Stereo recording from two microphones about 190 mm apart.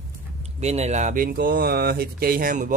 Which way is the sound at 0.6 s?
35° right (ahead or behind).